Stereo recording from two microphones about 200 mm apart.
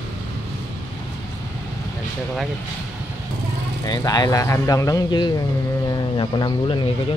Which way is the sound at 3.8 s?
20° left (ahead or behind).